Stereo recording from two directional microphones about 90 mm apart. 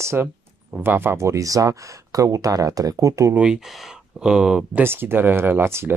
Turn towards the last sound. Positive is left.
turn(degrees=-25)  # may be behind; listen again after turning